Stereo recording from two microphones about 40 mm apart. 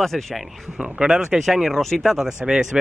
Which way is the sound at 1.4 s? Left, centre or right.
Centre.